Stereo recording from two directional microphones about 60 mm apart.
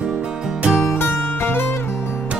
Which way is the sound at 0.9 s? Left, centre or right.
Left.